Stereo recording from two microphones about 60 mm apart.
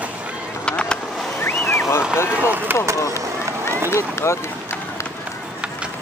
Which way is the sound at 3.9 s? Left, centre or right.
Left.